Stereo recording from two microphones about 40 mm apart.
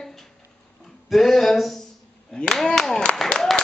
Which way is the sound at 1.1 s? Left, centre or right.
Centre.